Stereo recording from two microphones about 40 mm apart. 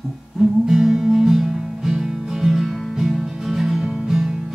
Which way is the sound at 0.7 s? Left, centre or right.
Centre.